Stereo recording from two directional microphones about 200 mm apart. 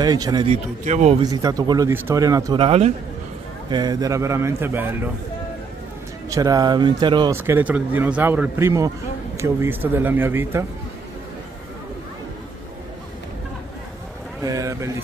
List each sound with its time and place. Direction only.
0.0 s speech: 20° right (ahead or behind)
0.5 s speech: 35° right (ahead or behind)
1.2 s a man's voice: 20° right (ahead or behind)
6.3 s speech: 15° right (ahead or behind)
7.3 s a man's voice: 10° right (ahead or behind)
14.4 s a man's voice: 15° right (ahead or behind)